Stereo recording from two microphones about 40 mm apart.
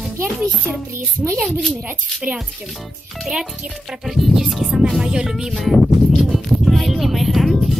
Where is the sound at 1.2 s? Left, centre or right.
Right.